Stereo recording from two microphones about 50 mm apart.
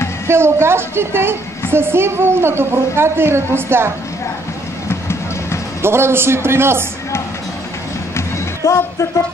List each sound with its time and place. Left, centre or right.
0.3 s a woman's voice: right
5.8 s a woman's voice: right
8.6 s speech: left